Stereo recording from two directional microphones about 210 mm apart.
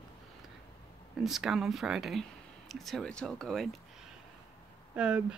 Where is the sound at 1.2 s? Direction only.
Centre (ahead or behind).